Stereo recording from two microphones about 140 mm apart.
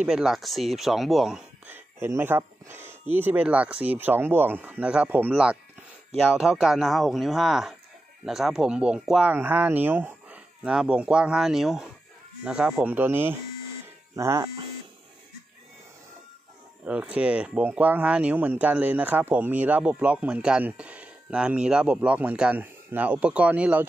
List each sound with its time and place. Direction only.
0.0 s speech: 5° right (ahead or behind)
1.7 s speech: 15° right (ahead or behind)
16.8 s speech: 10° right (ahead or behind)